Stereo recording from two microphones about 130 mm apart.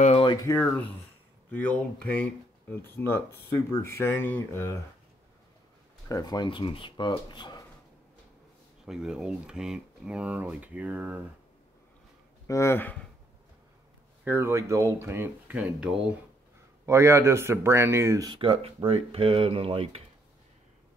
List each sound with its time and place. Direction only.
0.4 s speech: 20° left (ahead or behind)
6.0 s speech: 30° left (ahead or behind)
8.8 s speech: 5° right (ahead or behind)
12.4 s speech: 20° left (ahead or behind)
14.2 s speech: 15° right (ahead or behind)
16.8 s speech: 20° right (ahead or behind)
18.3 s speech: 40° right (ahead or behind)